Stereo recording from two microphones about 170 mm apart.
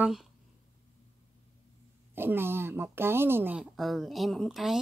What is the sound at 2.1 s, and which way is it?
Speech, 15° right (ahead or behind).